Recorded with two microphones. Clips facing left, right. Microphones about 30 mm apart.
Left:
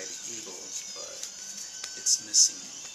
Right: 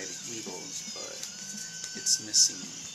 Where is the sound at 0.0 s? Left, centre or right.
Centre.